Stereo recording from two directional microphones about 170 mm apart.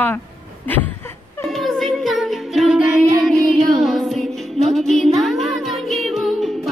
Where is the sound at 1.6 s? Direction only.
Centre (ahead or behind).